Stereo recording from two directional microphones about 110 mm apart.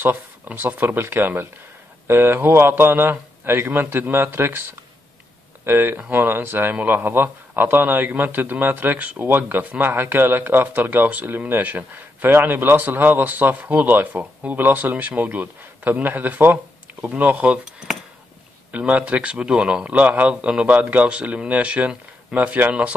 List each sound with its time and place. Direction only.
0.0 s a man's voice: 15° right (ahead or behind)
5.7 s speech: 20° right (ahead or behind)